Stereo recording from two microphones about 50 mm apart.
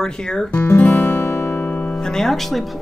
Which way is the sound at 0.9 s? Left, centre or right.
Left.